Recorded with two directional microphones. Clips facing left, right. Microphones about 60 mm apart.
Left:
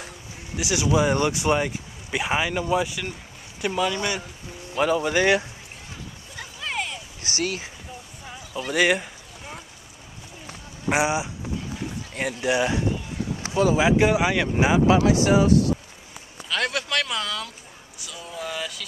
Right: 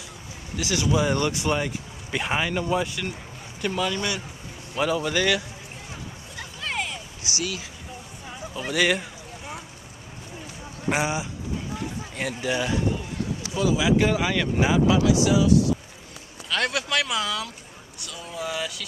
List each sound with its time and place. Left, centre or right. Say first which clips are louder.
0.6 s speech: left 2 dB; centre
5.1 s speech: left 5 dB; left
6.3 s a sound: even; centre
7.2 s speech: left 3 dB; left
8.3 s speech: left 1 dB; centre
10.9 s speech: left 3 dB; centre
12.4 s speech: left 3 dB; centre
13.4 s speech: left 4 dB; left
13.9 s speech: left 2 dB; centre
14.9 s speech: left 2 dB; left
16.4 s speech: even; centre